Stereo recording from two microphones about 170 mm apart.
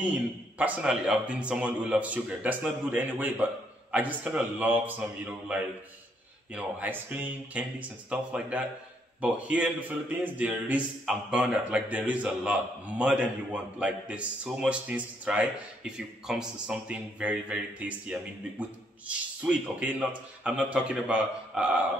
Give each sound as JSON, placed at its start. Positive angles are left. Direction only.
{"t": 0.0, "sound": "a man's voice", "side_deg": -10}